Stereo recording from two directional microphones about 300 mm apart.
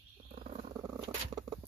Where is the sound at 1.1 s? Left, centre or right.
Centre.